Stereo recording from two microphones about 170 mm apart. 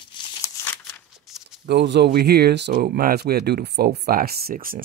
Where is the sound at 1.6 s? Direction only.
85° right.